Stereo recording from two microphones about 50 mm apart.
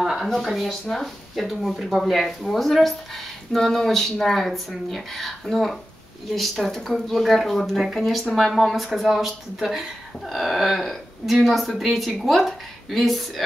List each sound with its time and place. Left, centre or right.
0.0 s a sound: centre
0.3 s speech: centre
1.3 s speech: centre